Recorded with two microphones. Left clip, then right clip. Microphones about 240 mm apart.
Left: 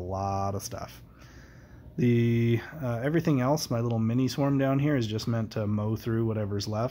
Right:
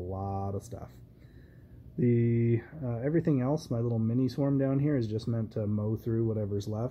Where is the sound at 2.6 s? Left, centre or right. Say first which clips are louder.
Left 4 dB; centre.